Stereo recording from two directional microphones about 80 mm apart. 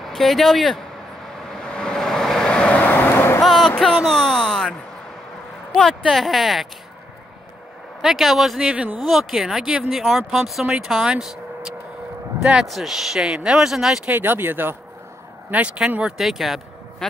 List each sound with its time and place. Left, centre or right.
0.0 s speech: centre
1.5 s vehicle: centre; by 3.4 s left
3.4 s a sound: centre
5.8 s speech: centre
8.0 s speech: centre
8.7 s speech: centre
9.0 s speech: centre
14.0 s speech: right
15.5 s speech: centre